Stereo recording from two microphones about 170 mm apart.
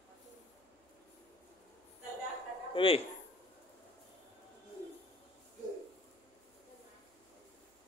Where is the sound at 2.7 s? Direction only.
30° left (ahead or behind).